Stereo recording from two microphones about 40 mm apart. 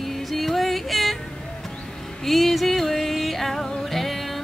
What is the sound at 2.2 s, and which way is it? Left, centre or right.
Music, centre.